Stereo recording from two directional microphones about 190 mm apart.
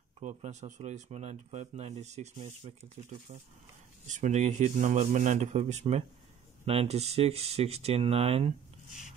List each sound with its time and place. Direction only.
0.2 s speech: 40° right (ahead or behind)
4.1 s speech: 40° right (ahead or behind)